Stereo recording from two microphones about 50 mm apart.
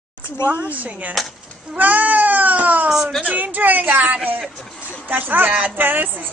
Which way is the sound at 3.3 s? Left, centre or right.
Right.